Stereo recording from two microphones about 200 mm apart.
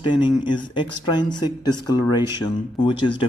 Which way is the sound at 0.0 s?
25° left (ahead or behind).